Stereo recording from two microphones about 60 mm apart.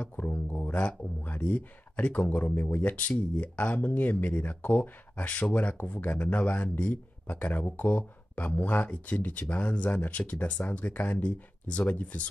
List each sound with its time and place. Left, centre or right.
0.0 s speech: left